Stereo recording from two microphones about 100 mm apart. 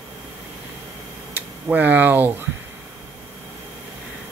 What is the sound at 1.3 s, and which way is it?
Speech, 15° right (ahead or behind).